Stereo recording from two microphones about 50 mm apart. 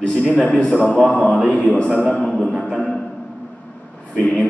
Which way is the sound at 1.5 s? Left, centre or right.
Left.